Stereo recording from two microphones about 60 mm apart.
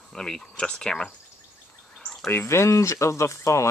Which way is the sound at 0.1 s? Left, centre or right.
Centre.